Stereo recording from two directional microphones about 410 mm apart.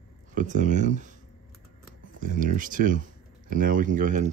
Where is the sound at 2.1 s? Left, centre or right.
Centre.